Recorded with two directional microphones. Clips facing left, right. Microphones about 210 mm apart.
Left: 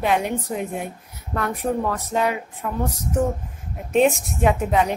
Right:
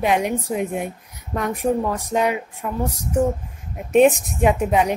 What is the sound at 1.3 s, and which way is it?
Speech, 15° right (ahead or behind).